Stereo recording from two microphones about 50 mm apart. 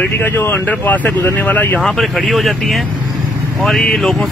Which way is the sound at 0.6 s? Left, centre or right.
Left.